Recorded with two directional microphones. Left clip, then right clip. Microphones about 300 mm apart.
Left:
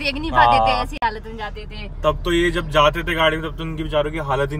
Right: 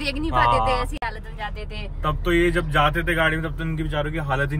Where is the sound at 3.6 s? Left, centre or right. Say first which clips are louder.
Left 5 dB; centre.